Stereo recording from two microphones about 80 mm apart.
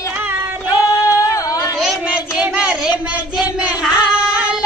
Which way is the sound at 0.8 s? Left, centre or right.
Left.